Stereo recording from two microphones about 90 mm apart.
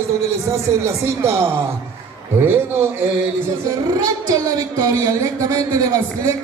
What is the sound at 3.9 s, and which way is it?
A woman's voice, 45° right (ahead or behind).